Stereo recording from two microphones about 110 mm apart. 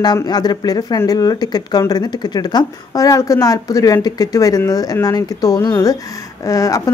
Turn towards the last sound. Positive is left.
turn(degrees=30)  # may be behind; listen again after turning